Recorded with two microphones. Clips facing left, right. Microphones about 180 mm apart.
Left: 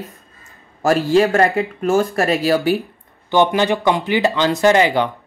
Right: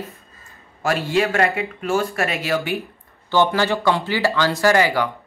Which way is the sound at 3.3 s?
20° left (ahead or behind).